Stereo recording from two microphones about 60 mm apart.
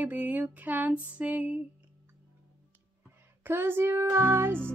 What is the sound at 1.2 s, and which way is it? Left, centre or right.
Music, right.